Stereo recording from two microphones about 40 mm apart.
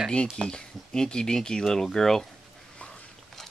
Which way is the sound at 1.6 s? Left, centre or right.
Centre.